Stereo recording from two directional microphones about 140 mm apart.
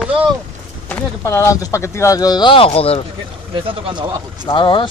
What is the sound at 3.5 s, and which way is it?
Speech, 35° right (ahead or behind).